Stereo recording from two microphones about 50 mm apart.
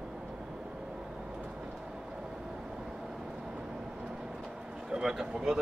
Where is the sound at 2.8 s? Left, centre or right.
Centre.